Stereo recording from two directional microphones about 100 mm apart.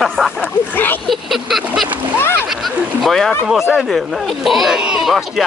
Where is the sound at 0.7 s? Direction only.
20° left (ahead or behind).